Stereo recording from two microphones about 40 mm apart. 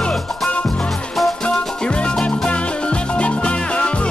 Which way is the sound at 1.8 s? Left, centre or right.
Left.